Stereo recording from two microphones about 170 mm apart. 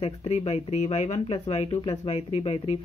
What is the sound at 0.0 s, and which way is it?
Speech, 40° left (ahead or behind).